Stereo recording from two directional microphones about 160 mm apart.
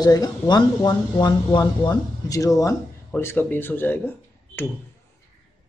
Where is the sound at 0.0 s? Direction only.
25° left (ahead or behind).